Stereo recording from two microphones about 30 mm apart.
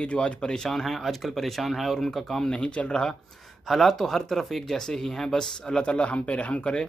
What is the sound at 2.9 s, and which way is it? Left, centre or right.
Speech, centre.